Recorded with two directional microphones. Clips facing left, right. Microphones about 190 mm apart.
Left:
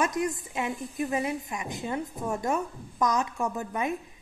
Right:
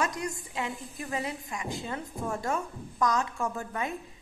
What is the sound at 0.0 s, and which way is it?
A woman's voice, 20° left (ahead or behind).